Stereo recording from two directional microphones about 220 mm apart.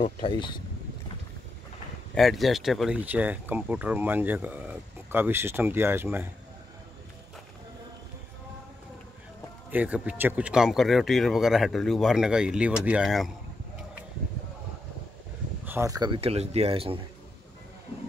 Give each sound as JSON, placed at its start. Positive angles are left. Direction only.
{"t": 0.0, "sound": "speech", "side_deg": 25}
{"t": 2.1, "sound": "speech", "side_deg": 0}
{"t": 9.7, "sound": "speech", "side_deg": -5}
{"t": 15.6, "sound": "speech", "side_deg": -10}